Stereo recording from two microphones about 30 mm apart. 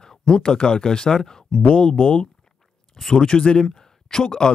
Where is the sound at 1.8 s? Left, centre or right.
Left.